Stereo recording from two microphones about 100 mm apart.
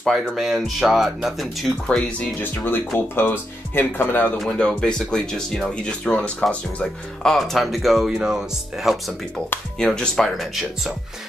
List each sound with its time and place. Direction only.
0.0 s speech: centre (ahead or behind)
1.9 s speech: 10° left (ahead or behind)
4.4 s speech: 5° left (ahead or behind)